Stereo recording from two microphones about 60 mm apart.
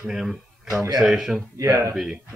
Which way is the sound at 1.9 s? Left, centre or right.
Centre.